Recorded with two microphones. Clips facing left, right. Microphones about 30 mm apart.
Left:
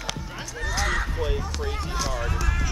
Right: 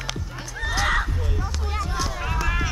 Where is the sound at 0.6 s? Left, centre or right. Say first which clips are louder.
Right 4 dB; right.